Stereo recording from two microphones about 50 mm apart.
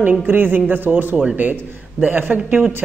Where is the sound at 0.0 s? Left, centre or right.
Right.